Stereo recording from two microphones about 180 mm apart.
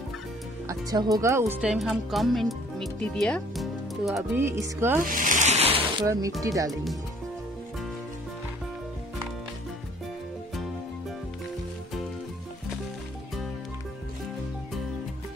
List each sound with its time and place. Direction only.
0.7 s speech: 20° right (ahead or behind); by 4.2 s centre (ahead or behind)
4.4 s speech: 15° right (ahead or behind)
5.0 s music: 50° right (ahead or behind); by 6.0 s 30° right (ahead or behind)
6.4 s speech: 20° right (ahead or behind)
6.7 s speech: centre (ahead or behind)